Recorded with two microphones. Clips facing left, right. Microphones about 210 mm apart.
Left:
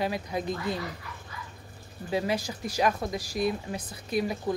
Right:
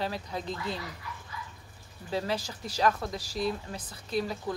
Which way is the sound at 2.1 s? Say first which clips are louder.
Left 3 dB; 15° left (ahead or behind).